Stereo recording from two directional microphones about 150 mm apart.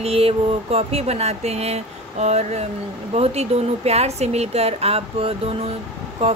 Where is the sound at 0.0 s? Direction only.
40° right (ahead or behind).